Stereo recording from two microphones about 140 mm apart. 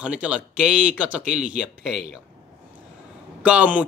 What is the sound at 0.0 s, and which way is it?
Speech, 10° right (ahead or behind).